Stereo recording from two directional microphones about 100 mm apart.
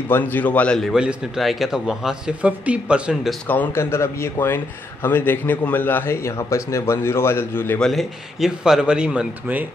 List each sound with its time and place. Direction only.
0.1 s speech: 20° left (ahead or behind)
0.9 s speech: 5° right (ahead or behind)
3.4 s a man's voice: 20° left (ahead or behind)
7.8 s speech: centre (ahead or behind)